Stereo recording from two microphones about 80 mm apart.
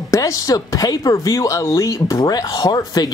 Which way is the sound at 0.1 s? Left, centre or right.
Left.